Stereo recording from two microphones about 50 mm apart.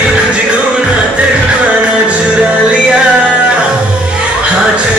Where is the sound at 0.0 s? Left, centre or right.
Centre.